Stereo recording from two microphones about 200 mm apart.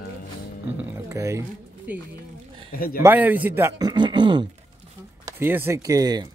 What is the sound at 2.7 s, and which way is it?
Speech, 45° left (ahead or behind).